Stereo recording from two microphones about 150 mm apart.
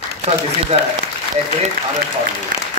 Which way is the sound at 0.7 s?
45° right (ahead or behind).